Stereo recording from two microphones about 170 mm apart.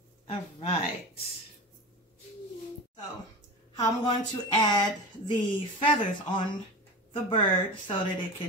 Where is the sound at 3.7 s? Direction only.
25° left (ahead or behind).